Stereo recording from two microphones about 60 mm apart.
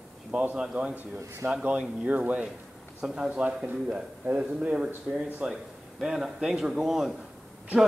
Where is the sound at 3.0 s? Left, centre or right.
Centre.